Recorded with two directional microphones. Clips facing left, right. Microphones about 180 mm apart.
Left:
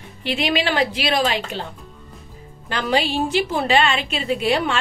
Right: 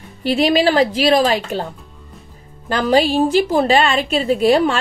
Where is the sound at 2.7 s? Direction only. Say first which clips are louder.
Right 6 dB; 40° right (ahead or behind).